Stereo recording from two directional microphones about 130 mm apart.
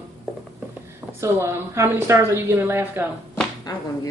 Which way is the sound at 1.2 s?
20° right (ahead or behind).